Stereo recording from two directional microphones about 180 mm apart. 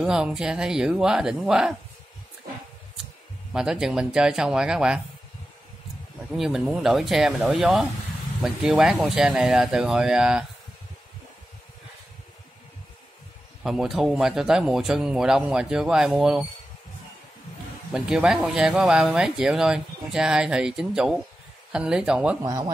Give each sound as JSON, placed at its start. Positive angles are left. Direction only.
{"t": 0.0, "sound": "speech", "side_deg": -5}
{"t": 3.5, "sound": "speech", "side_deg": -5}
{"t": 6.3, "sound": "speech", "side_deg": 0}
{"t": 13.7, "sound": "speech", "side_deg": 0}
{"t": 17.9, "sound": "speech", "side_deg": -5}
{"t": 22.4, "sound": "speech", "side_deg": -20}